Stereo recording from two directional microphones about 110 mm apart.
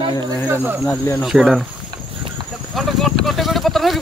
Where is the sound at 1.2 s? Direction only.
5° right (ahead or behind).